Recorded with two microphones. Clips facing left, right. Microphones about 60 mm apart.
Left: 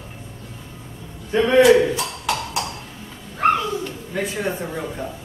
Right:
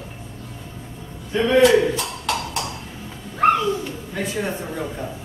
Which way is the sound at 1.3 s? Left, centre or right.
Left.